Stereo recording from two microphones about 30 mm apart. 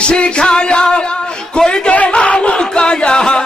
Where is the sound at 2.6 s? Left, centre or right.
Left.